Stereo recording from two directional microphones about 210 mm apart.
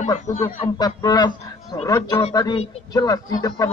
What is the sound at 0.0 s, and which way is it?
Speech, 35° left (ahead or behind).